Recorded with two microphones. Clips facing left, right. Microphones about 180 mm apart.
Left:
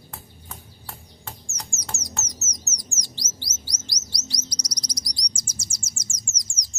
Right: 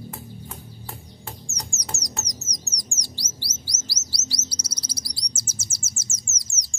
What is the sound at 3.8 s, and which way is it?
Chirp, 5° right (ahead or behind).